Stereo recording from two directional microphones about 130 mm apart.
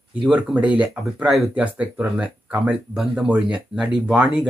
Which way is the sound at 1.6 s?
10° right (ahead or behind).